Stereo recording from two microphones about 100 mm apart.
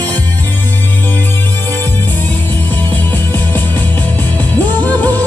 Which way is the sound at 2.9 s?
15° left (ahead or behind).